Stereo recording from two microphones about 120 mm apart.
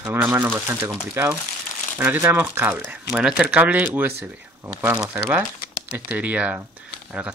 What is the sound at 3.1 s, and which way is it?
Speech, 5° right (ahead or behind).